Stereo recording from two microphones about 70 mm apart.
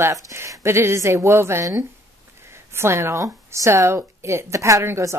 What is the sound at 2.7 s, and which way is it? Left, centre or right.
A woman's voice, right.